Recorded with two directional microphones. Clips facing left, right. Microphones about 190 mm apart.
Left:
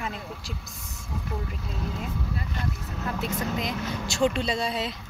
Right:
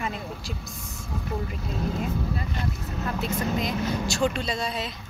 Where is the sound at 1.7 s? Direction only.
45° right (ahead or behind).